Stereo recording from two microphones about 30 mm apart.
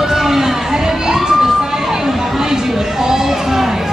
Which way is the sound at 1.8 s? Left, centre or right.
Centre.